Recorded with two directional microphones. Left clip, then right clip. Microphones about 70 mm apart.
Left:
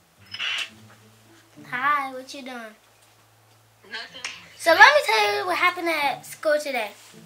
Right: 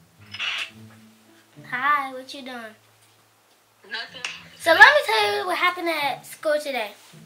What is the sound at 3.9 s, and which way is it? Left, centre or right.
Speech, centre.